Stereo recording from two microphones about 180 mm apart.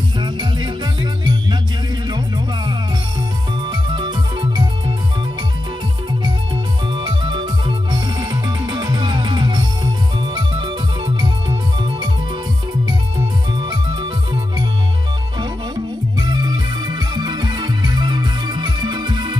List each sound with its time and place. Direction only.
0.2 s music: 25° right (ahead or behind)
6.2 s music: 25° right (ahead or behind)
15.3 s music: 25° right (ahead or behind)